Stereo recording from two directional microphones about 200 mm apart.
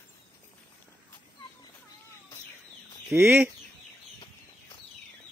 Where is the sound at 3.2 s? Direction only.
10° right (ahead or behind).